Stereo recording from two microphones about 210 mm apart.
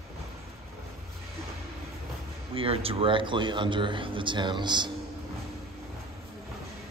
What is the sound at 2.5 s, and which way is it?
A man's voice, 25° right (ahead or behind).